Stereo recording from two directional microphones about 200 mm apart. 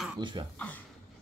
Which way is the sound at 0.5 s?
10° left (ahead or behind).